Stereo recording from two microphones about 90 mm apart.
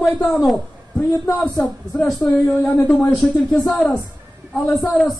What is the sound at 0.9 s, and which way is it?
Speech, 20° left (ahead or behind).